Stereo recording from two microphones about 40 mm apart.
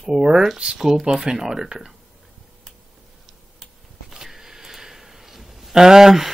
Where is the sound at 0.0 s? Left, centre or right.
Centre.